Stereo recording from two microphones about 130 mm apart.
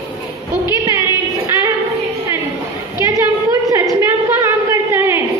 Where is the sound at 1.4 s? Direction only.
25° right (ahead or behind).